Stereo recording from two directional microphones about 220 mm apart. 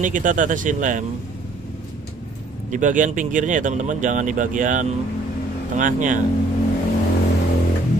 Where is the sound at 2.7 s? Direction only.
35° right (ahead or behind).